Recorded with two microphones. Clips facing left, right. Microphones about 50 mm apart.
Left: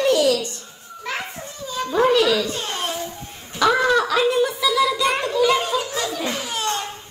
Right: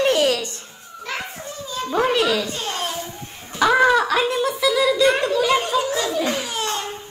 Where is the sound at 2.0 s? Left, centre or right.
Right.